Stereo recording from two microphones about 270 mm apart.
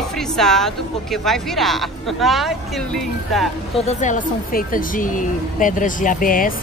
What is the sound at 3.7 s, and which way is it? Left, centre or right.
Speech, left.